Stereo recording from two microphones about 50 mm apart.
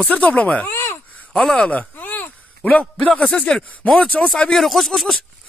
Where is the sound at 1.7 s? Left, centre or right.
Left.